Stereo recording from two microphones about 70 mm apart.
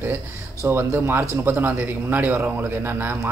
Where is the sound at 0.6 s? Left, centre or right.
Right.